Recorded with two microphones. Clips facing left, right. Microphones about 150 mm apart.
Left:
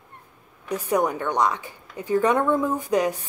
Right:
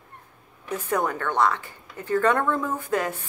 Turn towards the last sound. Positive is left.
turn(degrees=15)  # may be behind; listen again after turning